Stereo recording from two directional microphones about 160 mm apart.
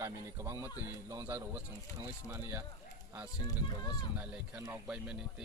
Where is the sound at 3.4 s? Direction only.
25° left (ahead or behind).